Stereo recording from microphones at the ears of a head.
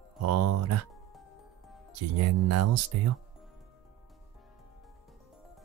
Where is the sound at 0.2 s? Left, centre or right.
Right.